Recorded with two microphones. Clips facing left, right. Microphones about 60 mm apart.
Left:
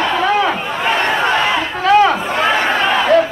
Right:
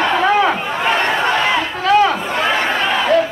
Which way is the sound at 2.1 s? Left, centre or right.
Left.